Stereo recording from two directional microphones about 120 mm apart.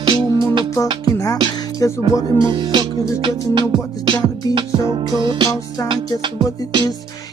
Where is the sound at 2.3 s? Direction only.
40° right (ahead or behind).